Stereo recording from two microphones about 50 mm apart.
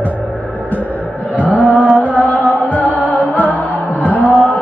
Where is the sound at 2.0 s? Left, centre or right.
Left.